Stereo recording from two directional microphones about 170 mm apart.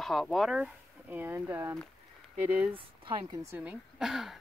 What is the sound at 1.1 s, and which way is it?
Speech, 15° right (ahead or behind).